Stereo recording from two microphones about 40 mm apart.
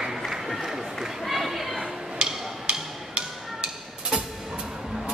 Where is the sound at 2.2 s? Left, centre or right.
Right.